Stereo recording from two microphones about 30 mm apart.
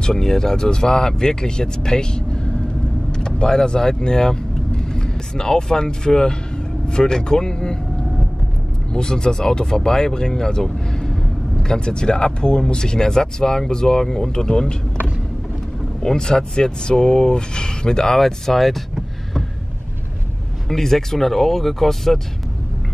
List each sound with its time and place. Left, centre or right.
0.0 s speech: centre
8.9 s speech: left
16.0 s speech: centre
18.2 s speech: centre
20.6 s speech: centre